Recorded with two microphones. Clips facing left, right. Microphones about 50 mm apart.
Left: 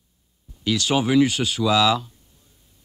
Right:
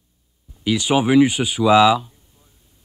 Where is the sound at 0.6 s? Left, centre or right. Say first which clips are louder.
Right 3 dB; centre.